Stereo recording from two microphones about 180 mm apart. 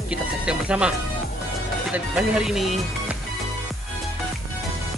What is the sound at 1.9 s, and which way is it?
Speech, 5° right (ahead or behind).